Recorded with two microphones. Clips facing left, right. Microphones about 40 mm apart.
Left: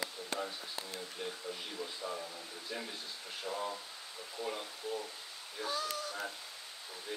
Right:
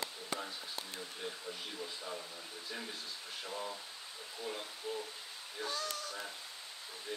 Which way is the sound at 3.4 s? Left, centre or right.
Centre.